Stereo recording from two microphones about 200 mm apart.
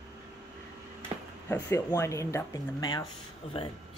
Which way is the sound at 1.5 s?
10° left (ahead or behind).